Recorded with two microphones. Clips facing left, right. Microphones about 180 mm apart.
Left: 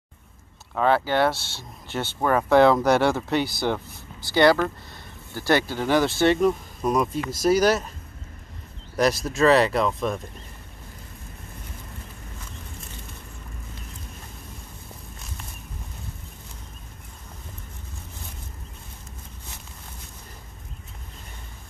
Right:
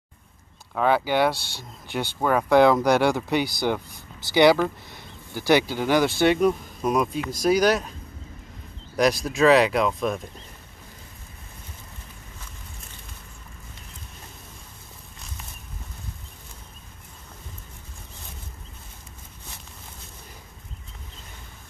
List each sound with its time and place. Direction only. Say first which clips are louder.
0.7 s speech: even; 5° right (ahead or behind)
4.2 s speech: right 1 dB; 20° right (ahead or behind)
5.7 s speech: even; 5° right (ahead or behind)
8.9 s speech: right 1 dB; centre (ahead or behind)